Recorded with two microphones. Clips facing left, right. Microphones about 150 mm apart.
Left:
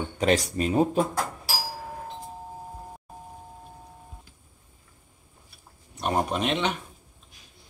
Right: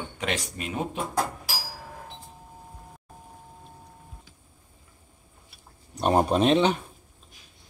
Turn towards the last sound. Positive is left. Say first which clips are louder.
# right 6 dB
turn(degrees=-35)  # may be behind; listen again after turning